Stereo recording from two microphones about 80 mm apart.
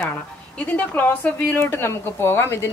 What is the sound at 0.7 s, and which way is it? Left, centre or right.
A woman's voice, centre.